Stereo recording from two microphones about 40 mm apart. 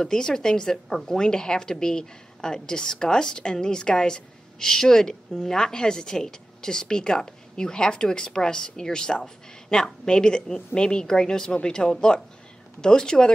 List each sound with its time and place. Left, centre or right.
0.0 s a woman's voice: centre